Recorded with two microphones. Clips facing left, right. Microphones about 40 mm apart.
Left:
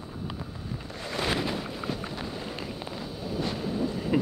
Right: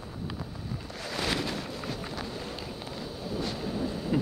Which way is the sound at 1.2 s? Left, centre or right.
Centre.